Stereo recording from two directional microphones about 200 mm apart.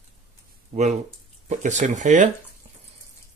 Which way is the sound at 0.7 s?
35° right (ahead or behind).